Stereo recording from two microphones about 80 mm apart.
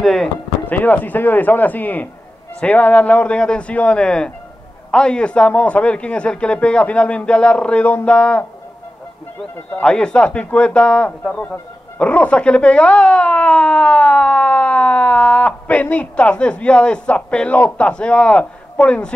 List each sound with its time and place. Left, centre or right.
0.0 s speech: centre
0.7 s speech: left
9.7 s speech: centre